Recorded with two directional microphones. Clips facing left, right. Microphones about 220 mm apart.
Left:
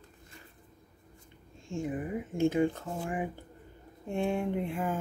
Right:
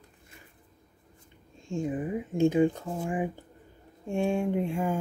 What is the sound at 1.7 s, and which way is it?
Speech, 15° right (ahead or behind).